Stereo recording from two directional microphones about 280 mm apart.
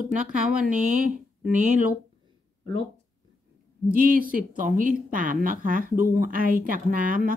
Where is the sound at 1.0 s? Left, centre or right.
Right.